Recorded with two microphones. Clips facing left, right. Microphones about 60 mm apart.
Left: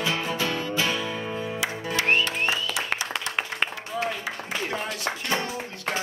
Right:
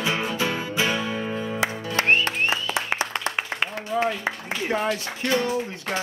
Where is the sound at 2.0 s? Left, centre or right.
Right.